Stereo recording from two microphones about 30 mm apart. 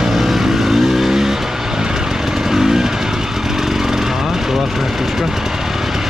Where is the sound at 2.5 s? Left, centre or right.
Centre.